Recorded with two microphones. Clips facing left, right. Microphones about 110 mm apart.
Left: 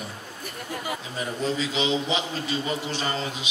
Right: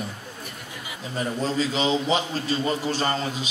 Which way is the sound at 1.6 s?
40° right (ahead or behind).